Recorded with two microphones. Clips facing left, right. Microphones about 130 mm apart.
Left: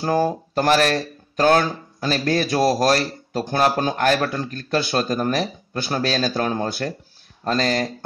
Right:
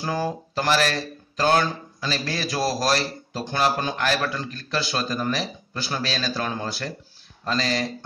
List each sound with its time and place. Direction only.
0.0 s speech: 50° left (ahead or behind)